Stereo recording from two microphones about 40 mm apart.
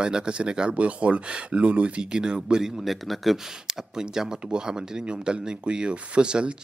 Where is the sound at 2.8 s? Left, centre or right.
Centre.